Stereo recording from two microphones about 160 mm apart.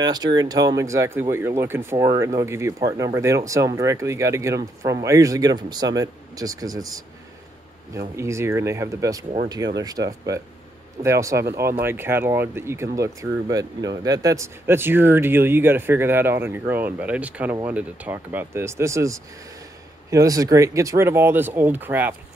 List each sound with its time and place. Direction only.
0.0 s speech: 25° right (ahead or behind)
8.2 s speech: 15° right (ahead or behind)